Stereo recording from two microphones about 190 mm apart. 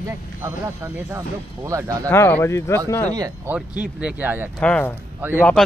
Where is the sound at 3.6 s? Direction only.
5° right (ahead or behind).